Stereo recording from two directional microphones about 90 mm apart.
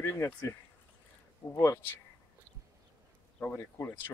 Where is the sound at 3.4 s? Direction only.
30° left (ahead or behind).